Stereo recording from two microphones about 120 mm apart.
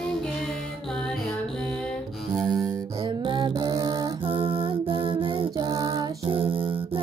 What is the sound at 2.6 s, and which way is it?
Music, 40° right (ahead or behind).